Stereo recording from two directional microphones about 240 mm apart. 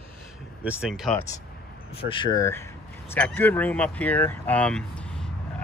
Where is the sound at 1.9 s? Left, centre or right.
Left.